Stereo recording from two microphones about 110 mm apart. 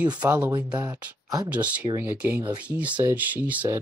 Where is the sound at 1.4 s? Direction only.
15° right (ahead or behind).